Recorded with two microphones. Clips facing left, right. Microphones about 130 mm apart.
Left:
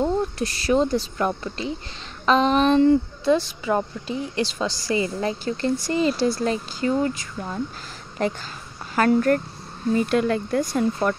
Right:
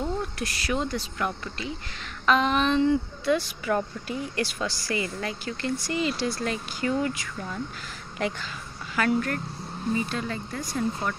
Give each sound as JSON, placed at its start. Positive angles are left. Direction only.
{"t": 0.0, "sound": "speech", "side_deg": 30}
{"t": 3.3, "sound": "a woman's voice", "side_deg": 30}
{"t": 9.9, "sound": "speech", "side_deg": 60}